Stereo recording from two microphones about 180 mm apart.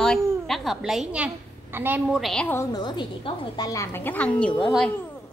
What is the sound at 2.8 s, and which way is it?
A woman's voice, 25° left (ahead or behind).